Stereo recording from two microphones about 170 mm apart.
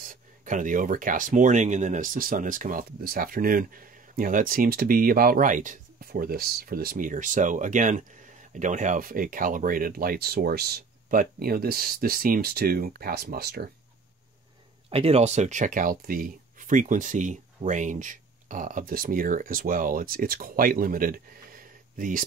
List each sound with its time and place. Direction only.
0.0 s speech: 50° right (ahead or behind); by 13.7 s 70° right (ahead or behind)
14.9 s speech: 35° right (ahead or behind); by 22.2 s 55° right (ahead or behind)